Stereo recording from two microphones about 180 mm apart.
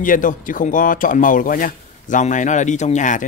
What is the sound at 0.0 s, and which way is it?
Speech, 45° left (ahead or behind).